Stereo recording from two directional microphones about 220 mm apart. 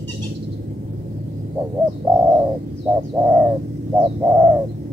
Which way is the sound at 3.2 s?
20° right (ahead or behind).